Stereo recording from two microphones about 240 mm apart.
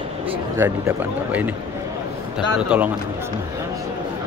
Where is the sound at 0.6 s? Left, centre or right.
Centre.